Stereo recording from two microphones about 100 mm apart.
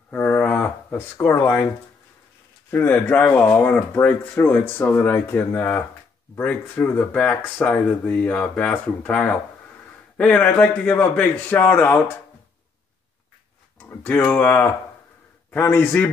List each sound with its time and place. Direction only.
0.1 s a sound: 10° left (ahead or behind)
0.7 s speech: 25° left (ahead or behind)
2.7 s speech: 20° left (ahead or behind)
13.7 s speech: 20° left (ahead or behind)